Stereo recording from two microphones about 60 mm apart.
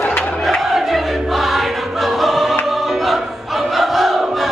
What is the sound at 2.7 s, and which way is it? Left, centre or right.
Crowd, centre.